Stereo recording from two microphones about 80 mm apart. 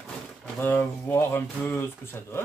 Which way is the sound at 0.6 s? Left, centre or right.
Left.